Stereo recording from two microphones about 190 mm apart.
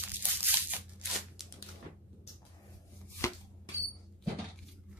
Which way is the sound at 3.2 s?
15° left (ahead or behind).